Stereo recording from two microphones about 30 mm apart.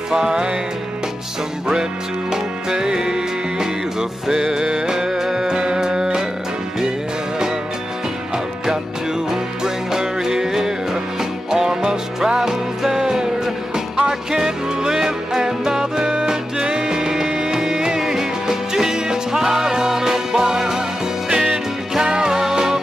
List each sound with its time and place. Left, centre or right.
0.1 s music: right
2.3 s music: right
9.9 s music: centre
22.1 s music: right